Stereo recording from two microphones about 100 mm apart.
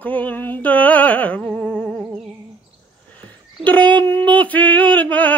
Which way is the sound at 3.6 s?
15° left (ahead or behind).